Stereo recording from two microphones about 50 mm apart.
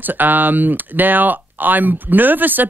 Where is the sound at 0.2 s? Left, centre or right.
Right.